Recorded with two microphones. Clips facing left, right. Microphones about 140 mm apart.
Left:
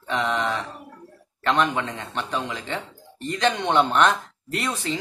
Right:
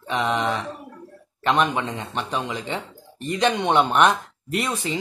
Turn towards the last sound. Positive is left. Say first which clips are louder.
# right 2 dB
turn(degrees=-15)  # may be behind; listen again after turning